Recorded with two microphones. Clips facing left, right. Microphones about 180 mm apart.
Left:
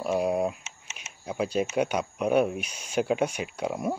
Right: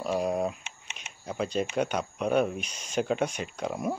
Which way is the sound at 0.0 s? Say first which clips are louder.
Left 2 dB; 10° left (ahead or behind).